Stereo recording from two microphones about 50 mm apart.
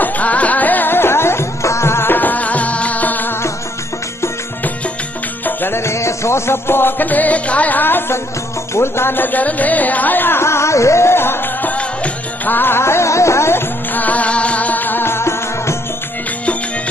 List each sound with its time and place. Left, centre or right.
0.0 s music: left
2.1 s music: left
5.7 s music: left
7.8 s music: left
8.7 s music: left
10.4 s music: left
11.6 s music: left
12.5 s music: left
13.9 s music: left